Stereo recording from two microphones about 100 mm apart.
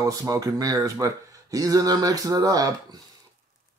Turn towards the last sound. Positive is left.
turn(degrees=-40)  # may be behind; listen again after turning